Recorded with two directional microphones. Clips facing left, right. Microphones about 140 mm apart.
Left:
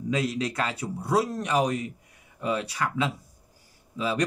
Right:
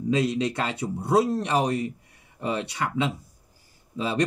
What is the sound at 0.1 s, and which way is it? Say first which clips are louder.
A man's voice: right 4 dB; 25° right (ahead or behind).